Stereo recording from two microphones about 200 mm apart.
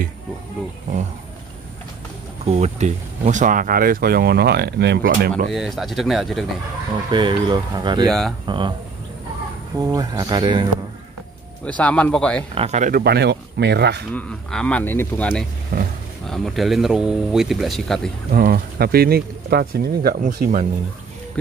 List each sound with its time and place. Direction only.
2.4 s speech: 35° right (ahead or behind); by 5.3 s 55° right (ahead or behind)
5.5 s speech: centre (ahead or behind)
7.1 s speech: 20° right (ahead or behind)
9.8 s speech: 20° right (ahead or behind)
11.6 s speech: 5° left (ahead or behind)
12.5 s speech: 35° right (ahead or behind); by 14.0 s 55° right (ahead or behind)
14.1 s speech: 5° left (ahead or behind)
15.7 s roaring cats: 40° right (ahead or behind)
16.3 s speech: centre (ahead or behind)
18.3 s speech: 50° right (ahead or behind)